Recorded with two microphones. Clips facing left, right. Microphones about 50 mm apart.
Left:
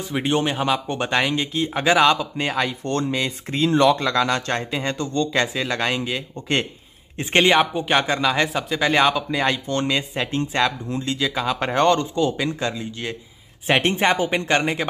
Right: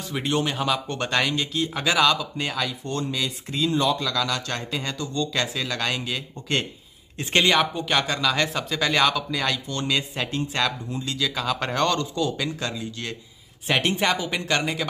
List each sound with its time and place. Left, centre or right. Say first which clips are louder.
0.1 s speech: left 3 dB; left
2.8 s speech: left 5 dB; left
3.2 s a man's voice: left 4 dB; left
9.8 s speech: left 3 dB; centre
13.7 s a man's voice: left 4 dB; left